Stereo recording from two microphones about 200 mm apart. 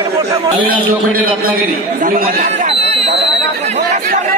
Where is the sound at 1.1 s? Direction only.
45° right (ahead or behind).